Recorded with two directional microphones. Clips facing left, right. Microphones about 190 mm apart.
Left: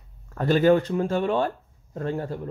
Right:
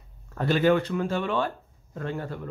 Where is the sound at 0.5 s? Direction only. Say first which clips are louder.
Left 3 dB; 40° left (ahead or behind).